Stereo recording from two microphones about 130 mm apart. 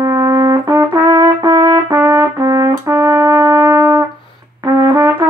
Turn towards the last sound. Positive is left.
turn(degrees=-25)  # may be behind; listen again after turning